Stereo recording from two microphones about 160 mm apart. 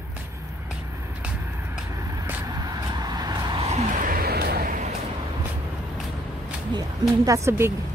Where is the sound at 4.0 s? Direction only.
65° right (ahead or behind).